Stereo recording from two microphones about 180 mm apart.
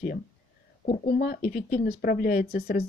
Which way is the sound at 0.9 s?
55° left (ahead or behind).